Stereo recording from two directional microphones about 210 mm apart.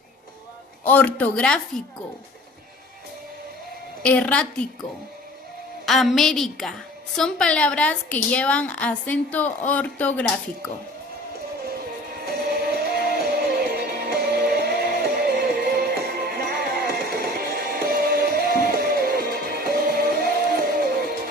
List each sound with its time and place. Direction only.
0.8 s a woman's voice: 5° left (ahead or behind)
4.0 s a woman's voice: 5° left (ahead or behind)
5.9 s a woman's voice: centre (ahead or behind)
12.3 s music: 50° right (ahead or behind)